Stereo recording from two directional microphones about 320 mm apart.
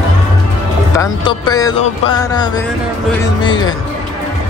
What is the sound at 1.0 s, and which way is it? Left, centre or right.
Speech, centre.